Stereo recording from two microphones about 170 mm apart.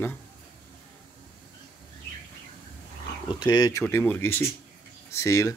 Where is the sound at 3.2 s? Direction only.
25° left (ahead or behind).